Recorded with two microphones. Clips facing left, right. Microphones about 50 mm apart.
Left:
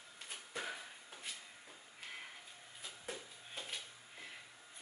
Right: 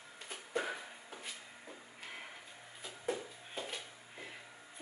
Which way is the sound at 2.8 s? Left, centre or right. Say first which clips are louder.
Right 9 dB; centre.